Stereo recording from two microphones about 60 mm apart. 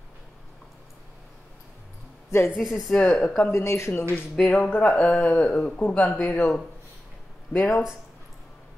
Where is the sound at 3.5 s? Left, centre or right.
Left.